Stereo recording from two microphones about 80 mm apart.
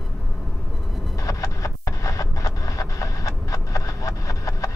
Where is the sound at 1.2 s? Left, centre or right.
Left.